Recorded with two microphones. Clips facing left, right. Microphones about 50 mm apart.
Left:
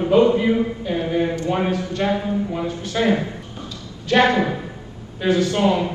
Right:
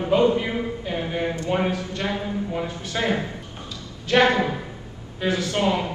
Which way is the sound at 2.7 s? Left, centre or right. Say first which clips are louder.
Left 4 dB; right.